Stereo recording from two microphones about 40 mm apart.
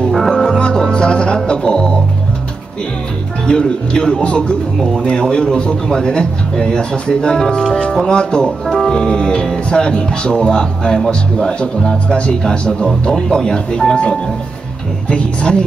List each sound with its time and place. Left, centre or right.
0.1 s music: centre
0.5 s music: left
3.4 s speech: left
15.0 s speech: left